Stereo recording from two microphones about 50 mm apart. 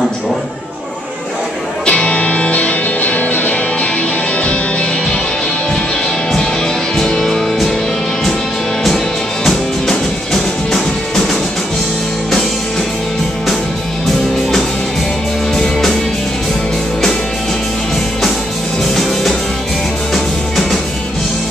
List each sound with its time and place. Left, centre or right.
1.9 s music: left
7.1 s music: centre
8.8 s music: centre